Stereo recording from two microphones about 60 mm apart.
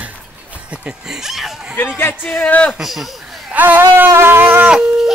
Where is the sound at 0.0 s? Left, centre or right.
Right.